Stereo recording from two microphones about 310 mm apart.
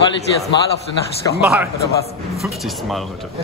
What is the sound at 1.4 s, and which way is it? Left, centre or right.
Speech, centre.